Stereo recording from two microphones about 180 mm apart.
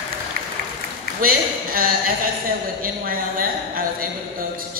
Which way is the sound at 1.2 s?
55° right (ahead or behind).